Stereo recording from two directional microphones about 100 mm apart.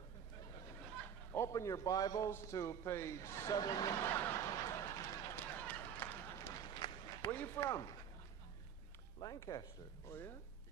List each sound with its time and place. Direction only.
1.3 s a man's voice: 30° left (ahead or behind)
3.5 s speech: 40° left (ahead or behind)
4.0 s a sound: 25° left (ahead or behind)
5.7 s run: 20° left (ahead or behind)
6.4 s run: 40° left (ahead or behind)
7.2 s a man's voice: 20° left (ahead or behind)
9.2 s speech: 40° left (ahead or behind)